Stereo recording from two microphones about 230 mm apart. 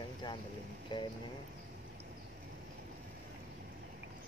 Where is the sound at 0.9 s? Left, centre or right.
Centre.